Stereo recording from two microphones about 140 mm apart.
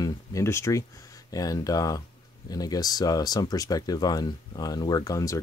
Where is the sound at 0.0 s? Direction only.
20° left (ahead or behind).